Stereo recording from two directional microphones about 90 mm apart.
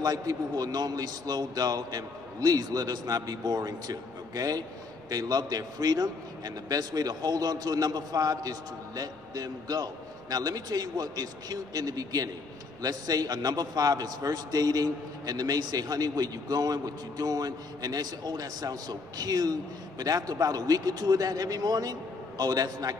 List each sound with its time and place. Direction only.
0.0 s a man's voice: 45° right (ahead or behind)